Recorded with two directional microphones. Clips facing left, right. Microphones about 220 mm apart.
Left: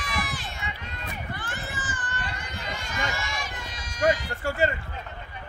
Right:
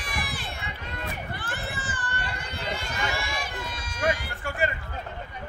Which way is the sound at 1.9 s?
60° right (ahead or behind).